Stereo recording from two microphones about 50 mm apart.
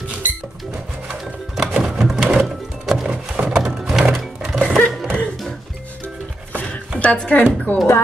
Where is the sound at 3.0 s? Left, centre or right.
Centre.